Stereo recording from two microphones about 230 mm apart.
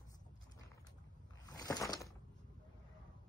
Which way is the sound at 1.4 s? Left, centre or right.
Centre.